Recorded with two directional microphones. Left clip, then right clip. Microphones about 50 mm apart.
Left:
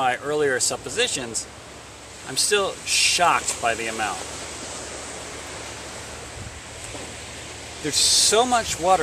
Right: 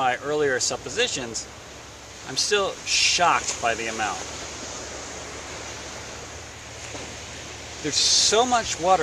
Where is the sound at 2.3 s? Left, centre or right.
Centre.